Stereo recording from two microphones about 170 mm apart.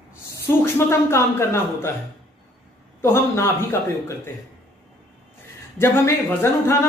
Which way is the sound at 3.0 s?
15° left (ahead or behind).